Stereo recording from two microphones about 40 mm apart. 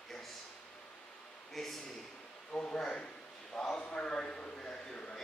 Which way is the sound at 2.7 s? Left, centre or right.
Left.